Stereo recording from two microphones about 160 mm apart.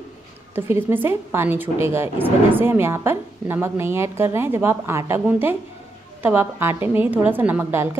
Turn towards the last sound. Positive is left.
turn(degrees=-10)  # may be behind; listen again after turning